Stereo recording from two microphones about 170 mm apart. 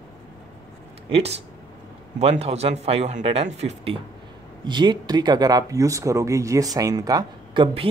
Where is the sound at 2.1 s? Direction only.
40° right (ahead or behind).